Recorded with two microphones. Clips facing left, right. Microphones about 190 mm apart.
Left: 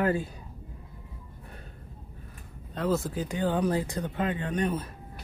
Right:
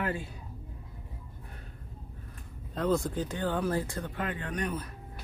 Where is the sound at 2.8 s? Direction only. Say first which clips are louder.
Even; 5° left (ahead or behind); by 4.9 s 25° left (ahead or behind).